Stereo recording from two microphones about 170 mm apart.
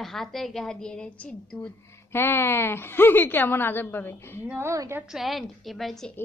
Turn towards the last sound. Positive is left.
turn(degrees=5)  # may be behind; listen again after turning